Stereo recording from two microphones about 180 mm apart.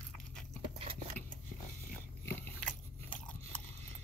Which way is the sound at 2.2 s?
10° left (ahead or behind).